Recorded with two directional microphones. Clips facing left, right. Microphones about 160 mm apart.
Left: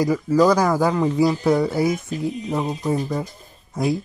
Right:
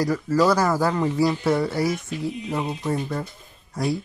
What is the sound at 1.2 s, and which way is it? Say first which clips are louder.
Speech: left 3 dB; centre (ahead or behind).